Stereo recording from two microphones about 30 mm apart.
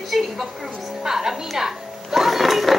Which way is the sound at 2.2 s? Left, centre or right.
Centre.